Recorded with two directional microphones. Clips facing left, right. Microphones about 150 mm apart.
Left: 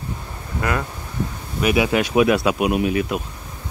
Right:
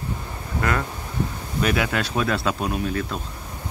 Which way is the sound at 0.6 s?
15° left (ahead or behind).